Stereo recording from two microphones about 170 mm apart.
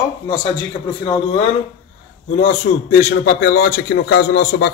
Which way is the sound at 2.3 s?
50° left (ahead or behind).